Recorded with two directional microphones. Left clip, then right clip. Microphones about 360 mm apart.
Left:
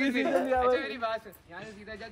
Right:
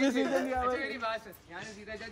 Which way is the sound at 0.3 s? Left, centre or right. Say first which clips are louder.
Left 5 dB; centre.